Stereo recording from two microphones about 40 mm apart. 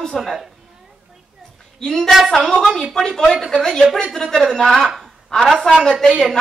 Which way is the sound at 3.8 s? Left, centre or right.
Centre.